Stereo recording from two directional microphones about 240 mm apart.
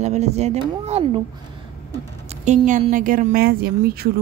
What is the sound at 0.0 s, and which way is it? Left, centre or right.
Speech, right.